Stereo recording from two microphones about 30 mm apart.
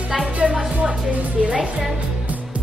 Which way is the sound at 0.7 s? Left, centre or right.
Right.